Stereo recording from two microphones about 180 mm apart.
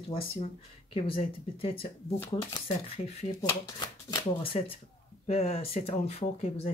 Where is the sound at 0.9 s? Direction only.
30° left (ahead or behind).